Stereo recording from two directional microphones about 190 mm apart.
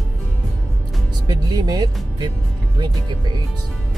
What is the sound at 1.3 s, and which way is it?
Speech, 20° right (ahead or behind).